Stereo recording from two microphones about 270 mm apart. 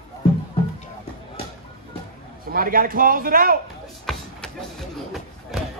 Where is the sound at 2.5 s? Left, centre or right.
Right.